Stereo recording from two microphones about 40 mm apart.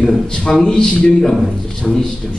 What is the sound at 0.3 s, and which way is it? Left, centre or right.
A man's voice, centre.